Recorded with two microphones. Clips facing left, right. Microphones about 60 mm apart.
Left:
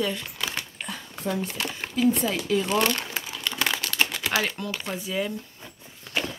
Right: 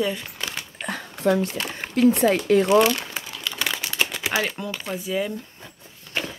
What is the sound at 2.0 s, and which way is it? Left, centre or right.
Speech, right.